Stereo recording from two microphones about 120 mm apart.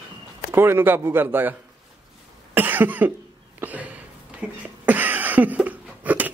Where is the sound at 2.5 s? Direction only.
15° right (ahead or behind).